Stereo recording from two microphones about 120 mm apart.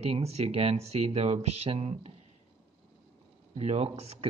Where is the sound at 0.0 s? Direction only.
60° right (ahead or behind).